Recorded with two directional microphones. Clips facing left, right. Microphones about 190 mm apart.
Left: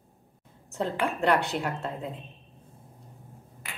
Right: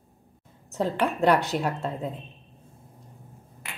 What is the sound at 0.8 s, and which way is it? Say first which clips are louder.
Speech: right 3 dB; 40° right (ahead or behind).